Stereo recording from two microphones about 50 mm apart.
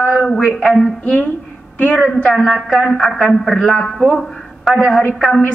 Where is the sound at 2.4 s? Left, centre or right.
Centre.